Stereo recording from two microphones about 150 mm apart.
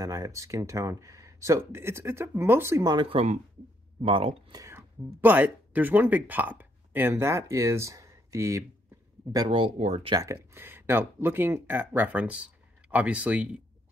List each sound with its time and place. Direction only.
0.0 s speech: 20° right (ahead or behind); by 4.4 s 40° right (ahead or behind)
4.5 s speech: 20° right (ahead or behind)
9.5 s speech: 40° right (ahead or behind)
10.1 s speech: 20° right (ahead or behind)